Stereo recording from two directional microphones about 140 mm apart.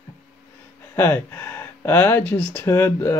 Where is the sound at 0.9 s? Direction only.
15° left (ahead or behind).